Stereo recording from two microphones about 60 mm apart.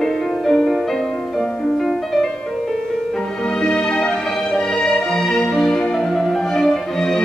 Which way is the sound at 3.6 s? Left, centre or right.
Centre.